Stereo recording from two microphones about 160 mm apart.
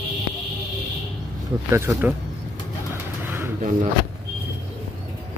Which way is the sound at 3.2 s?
15° right (ahead or behind).